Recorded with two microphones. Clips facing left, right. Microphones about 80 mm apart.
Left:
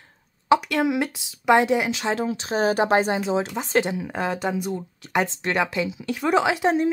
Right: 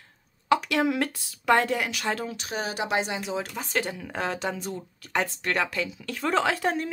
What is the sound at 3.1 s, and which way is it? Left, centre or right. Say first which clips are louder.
Speech: left 7 dB; left.